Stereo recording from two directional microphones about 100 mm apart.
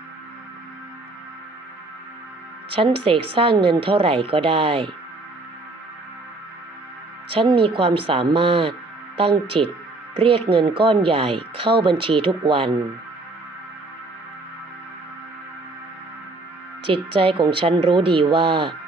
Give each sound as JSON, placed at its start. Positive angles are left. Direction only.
{"t": 2.7, "sound": "speech", "side_deg": -65}
{"t": 3.5, "sound": "speech", "side_deg": -55}
{"t": 7.2, "sound": "speech", "side_deg": -65}
{"t": 16.8, "sound": "speech", "side_deg": -65}